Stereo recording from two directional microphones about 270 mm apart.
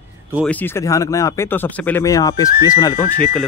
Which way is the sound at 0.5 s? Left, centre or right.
Centre.